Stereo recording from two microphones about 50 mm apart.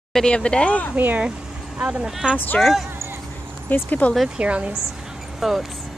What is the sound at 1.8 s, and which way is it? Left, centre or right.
Speech, right.